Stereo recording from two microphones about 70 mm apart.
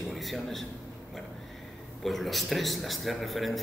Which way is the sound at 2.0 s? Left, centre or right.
Centre.